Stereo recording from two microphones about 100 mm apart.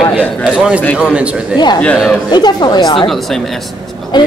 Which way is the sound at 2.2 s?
45° left (ahead or behind).